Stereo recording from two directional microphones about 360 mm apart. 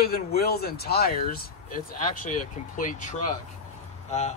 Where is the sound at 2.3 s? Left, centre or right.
Left.